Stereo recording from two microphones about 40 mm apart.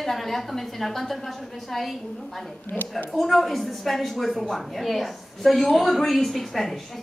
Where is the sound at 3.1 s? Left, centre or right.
Centre.